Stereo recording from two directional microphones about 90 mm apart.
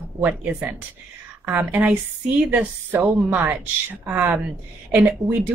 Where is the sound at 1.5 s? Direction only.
20° right (ahead or behind).